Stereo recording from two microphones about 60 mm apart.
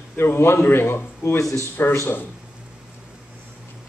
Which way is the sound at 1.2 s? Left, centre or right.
Left.